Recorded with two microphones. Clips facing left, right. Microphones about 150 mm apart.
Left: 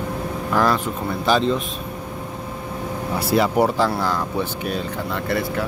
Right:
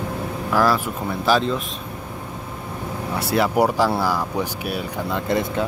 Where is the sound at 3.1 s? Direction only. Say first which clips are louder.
Left 1 dB; centre (ahead or behind).